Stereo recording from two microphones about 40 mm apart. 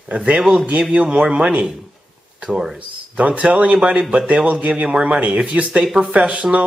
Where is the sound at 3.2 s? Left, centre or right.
Right.